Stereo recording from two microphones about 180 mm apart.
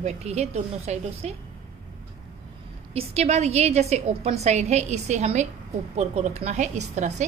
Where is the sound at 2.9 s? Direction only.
35° right (ahead or behind).